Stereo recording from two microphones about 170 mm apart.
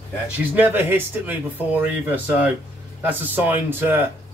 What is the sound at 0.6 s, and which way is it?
A man's voice, 10° right (ahead or behind).